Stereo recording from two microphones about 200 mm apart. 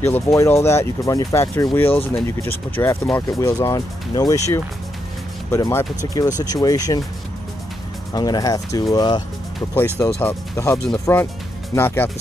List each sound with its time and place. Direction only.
0.0 s speech: 15° left (ahead or behind)
8.1 s speech: 20° left (ahead or behind)